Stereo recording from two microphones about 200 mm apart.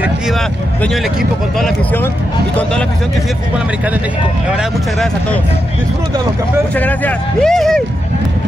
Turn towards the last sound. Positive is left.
turn(degrees=0)  # may be behind; listen again after turning